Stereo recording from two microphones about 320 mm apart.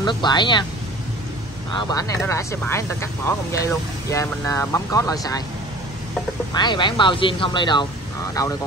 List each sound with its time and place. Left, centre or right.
0.0 s speech: centre
1.7 s speech: centre
6.5 s speech: centre